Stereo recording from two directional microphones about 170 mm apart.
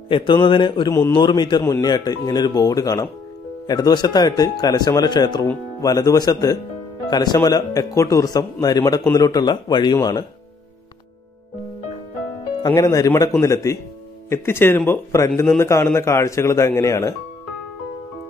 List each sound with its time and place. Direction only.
0.1 s speech: 30° left (ahead or behind)
12.6 s speech: 20° left (ahead or behind)